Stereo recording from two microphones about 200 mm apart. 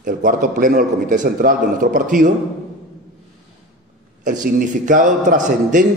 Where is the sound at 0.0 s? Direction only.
40° right (ahead or behind).